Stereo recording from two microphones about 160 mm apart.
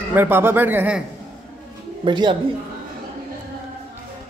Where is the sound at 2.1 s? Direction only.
30° right (ahead or behind).